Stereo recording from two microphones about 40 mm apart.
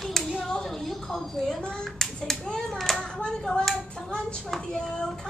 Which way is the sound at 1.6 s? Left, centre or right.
Centre.